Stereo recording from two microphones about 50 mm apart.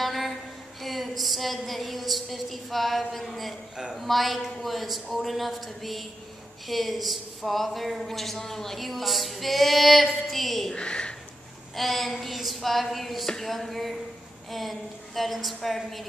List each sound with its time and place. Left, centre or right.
0.0 s a sound: centre
3.9 s speech: centre
10.7 s speech: centre
11.7 s speech: centre